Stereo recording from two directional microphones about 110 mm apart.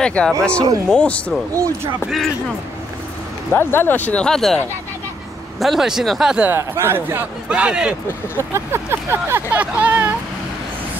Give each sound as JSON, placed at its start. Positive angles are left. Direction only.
{"t": 0.0, "sound": "speech", "side_deg": 10}
{"t": 3.5, "sound": "speech", "side_deg": 20}
{"t": 5.6, "sound": "speech", "side_deg": 0}
{"t": 6.5, "sound": "speech", "side_deg": -20}
{"t": 8.5, "sound": "speech", "side_deg": -20}